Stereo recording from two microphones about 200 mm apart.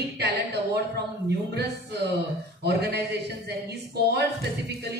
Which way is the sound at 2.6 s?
55° right (ahead or behind).